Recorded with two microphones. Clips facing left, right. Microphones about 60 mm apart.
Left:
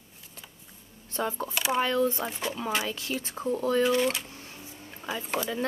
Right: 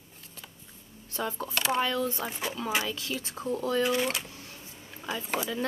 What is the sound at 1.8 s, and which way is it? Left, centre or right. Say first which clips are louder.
Speech: left 4 dB; left.